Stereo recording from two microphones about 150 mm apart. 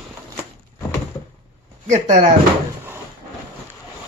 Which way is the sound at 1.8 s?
50° right (ahead or behind).